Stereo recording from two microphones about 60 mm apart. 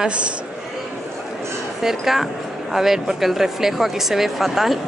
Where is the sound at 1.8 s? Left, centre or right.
Centre.